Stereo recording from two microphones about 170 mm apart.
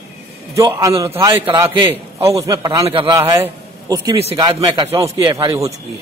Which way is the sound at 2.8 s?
30° right (ahead or behind).